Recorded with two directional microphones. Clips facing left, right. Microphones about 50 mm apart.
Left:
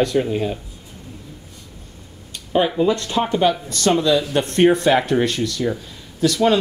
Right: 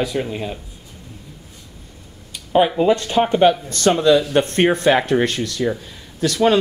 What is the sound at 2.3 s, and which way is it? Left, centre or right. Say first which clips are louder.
Speech: right 2 dB; centre.